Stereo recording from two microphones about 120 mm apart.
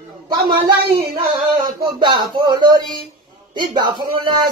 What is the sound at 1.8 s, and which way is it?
Speech, 40° right (ahead or behind).